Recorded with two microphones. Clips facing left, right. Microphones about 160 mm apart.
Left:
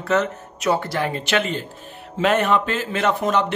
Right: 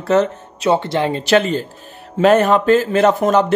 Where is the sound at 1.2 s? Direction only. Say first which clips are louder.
Right 8 dB; 35° right (ahead or behind).